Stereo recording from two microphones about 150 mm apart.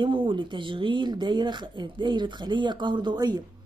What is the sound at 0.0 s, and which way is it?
Speech, 30° right (ahead or behind).